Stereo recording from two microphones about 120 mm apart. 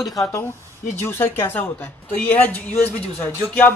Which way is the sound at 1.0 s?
20° left (ahead or behind).